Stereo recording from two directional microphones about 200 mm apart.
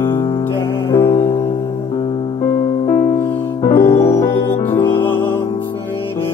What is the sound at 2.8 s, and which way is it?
Music, 15° left (ahead or behind).